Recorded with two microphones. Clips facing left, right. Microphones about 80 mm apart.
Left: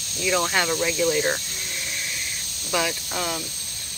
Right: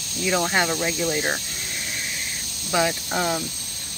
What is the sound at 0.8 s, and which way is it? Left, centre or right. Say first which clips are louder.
Speech: left 2 dB; right.